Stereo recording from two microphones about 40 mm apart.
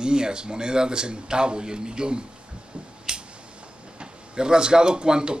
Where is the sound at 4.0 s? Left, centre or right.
Right.